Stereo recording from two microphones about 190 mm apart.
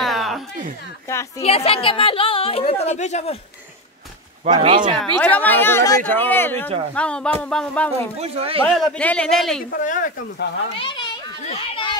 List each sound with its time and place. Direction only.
0.0 s a sound: centre (ahead or behind)
1.4 s a woman's voice: 30° left (ahead or behind)
4.5 s speech: 25° right (ahead or behind)
4.9 s speech: 10° left (ahead or behind)
8.2 s speech: 30° right (ahead or behind)
8.6 s speech: 5° left (ahead or behind)
9.7 s speech: 45° left (ahead or behind)
10.8 s a child's voice: 25° left (ahead or behind)